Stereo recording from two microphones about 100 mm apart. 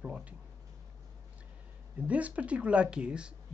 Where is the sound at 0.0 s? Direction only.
10° right (ahead or behind).